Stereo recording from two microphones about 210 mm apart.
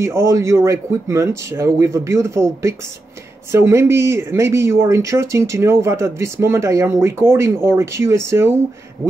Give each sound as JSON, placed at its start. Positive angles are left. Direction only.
{"t": 0.0, "sound": "speech", "side_deg": -15}